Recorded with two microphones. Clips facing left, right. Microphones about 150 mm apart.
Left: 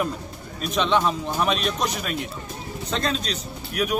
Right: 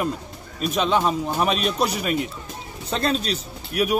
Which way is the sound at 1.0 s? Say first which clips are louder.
Right 2 dB; 5° right (ahead or behind).